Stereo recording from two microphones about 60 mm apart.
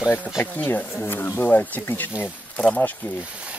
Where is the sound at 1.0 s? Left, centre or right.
Left.